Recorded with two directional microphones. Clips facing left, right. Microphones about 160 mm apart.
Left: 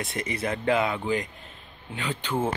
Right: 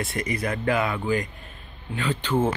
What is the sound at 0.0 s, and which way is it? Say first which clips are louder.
Speech: right 2 dB; 20° left (ahead or behind).